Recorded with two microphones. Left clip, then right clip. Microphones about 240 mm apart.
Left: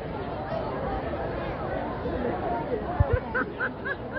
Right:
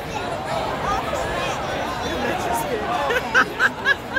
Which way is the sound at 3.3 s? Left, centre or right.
Right.